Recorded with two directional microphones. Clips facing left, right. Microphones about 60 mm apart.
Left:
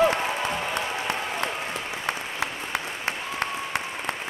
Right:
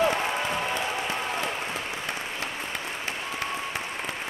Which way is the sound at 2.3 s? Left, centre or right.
Left.